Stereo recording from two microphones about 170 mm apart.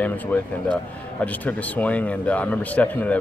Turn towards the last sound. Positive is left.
turn(degrees=10)  # may be behind; listen again after turning